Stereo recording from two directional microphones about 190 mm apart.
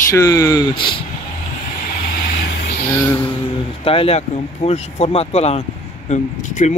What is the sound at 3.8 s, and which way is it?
Speech, 30° left (ahead or behind).